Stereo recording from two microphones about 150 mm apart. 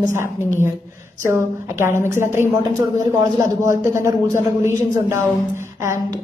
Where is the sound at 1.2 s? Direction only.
15° right (ahead or behind).